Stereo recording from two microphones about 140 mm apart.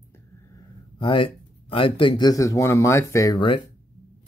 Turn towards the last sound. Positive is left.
turn(degrees=35)  # may be behind; listen again after turning